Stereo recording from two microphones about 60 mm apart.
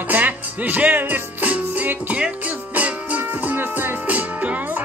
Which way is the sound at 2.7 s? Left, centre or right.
Right.